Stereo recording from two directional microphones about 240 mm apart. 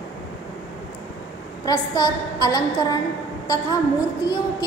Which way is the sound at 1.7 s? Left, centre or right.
Centre.